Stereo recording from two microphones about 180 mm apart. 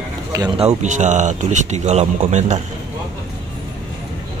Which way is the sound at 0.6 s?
40° right (ahead or behind).